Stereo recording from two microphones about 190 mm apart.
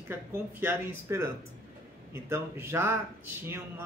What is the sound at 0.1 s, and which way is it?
A man's voice, 10° right (ahead or behind).